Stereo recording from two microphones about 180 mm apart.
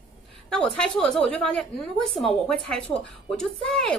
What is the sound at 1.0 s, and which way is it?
Speech, 5° left (ahead or behind).